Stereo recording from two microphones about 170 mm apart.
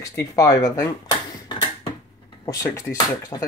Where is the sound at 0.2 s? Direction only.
20° left (ahead or behind).